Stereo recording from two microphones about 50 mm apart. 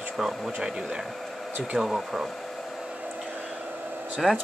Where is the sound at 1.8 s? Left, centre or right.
Centre.